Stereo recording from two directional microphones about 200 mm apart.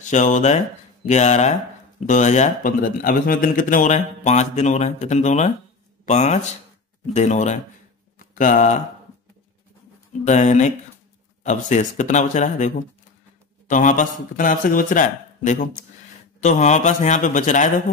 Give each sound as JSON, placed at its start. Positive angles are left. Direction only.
{"t": 0.0, "sound": "a man's voice", "side_deg": 40}
{"t": 10.2, "sound": "a man's voice", "side_deg": 35}